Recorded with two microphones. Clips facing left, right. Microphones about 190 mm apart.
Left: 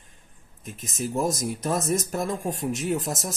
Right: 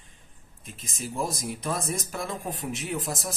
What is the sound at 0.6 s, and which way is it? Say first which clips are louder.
Speech: left 6 dB; 50° left (ahead or behind).